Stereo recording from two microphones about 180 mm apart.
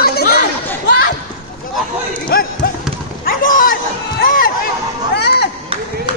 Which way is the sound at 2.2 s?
55° left (ahead or behind).